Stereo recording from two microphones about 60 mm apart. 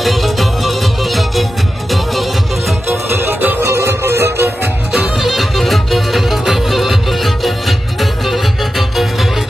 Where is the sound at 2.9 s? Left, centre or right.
Right.